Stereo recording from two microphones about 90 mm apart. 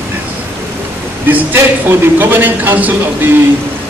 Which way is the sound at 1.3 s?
25° right (ahead or behind).